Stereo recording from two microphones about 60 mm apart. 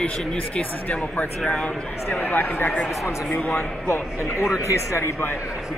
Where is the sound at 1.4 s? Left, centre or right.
Centre.